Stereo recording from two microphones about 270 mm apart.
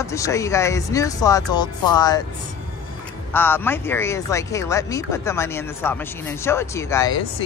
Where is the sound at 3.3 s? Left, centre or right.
Centre.